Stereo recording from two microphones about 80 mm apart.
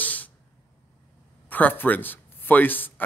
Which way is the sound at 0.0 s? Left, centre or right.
Left.